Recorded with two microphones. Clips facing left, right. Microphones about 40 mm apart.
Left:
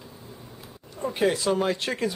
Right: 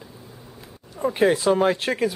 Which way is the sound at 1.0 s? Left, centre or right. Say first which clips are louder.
Right 5 dB; centre.